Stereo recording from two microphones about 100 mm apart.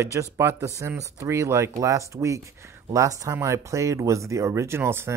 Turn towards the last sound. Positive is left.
turn(degrees=-25)  # may be behind; listen again after turning